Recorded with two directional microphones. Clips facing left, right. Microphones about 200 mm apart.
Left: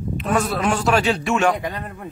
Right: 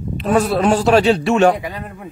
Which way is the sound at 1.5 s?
5° right (ahead or behind).